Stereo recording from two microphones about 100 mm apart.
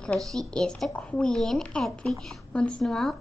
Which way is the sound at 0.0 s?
5° left (ahead or behind).